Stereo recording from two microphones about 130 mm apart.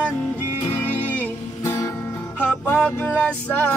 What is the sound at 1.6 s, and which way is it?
Music, 25° left (ahead or behind).